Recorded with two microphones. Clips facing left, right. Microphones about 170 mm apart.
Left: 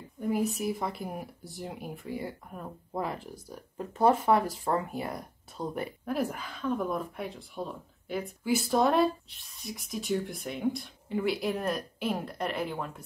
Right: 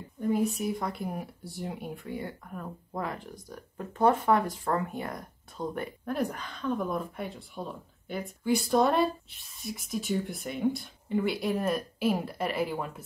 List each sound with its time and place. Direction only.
0.2 s speech: 5° left (ahead or behind)
2.5 s speech: 10° left (ahead or behind); by 13.0 s 5° right (ahead or behind)